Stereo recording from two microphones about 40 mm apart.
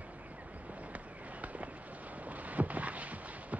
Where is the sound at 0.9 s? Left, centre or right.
Right.